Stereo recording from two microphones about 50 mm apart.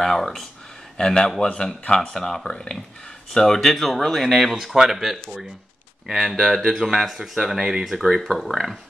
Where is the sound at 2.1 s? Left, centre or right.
Centre.